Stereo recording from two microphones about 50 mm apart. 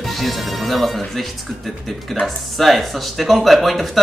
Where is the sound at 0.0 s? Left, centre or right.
Centre.